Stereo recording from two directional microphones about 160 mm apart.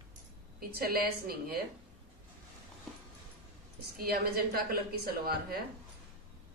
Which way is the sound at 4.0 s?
70° right (ahead or behind).